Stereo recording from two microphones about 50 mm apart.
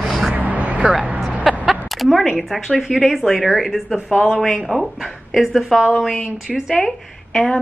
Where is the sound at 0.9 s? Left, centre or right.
Centre.